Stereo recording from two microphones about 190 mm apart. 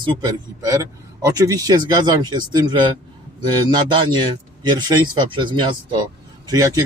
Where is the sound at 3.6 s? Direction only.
25° right (ahead or behind).